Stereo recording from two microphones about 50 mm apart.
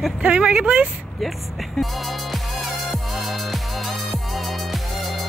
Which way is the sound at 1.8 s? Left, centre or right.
Centre.